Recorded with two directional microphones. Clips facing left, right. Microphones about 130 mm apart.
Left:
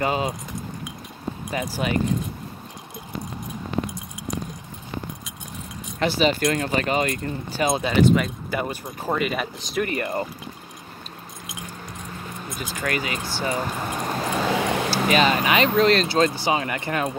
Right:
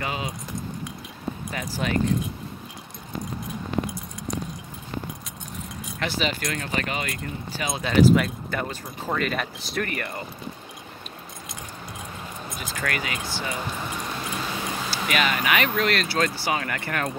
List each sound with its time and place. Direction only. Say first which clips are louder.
0.0 s speech: left 7 dB; 35° left (ahead or behind)
1.5 s speech: left 4 dB; 15° left (ahead or behind)
5.9 s speech: left 7 dB; 35° left (ahead or behind)
7.8 s speech: right 3 dB; centre (ahead or behind)
8.5 s speech: left 4 dB; 15° left (ahead or behind)
9.8 s speech: left 6 dB; 25° left (ahead or behind)
12.8 s speech: left 3 dB; 30° left (ahead or behind)
14.5 s a sound: left 8 dB; 75° left (ahead or behind)
14.9 s speech: left 5 dB; 30° left (ahead or behind)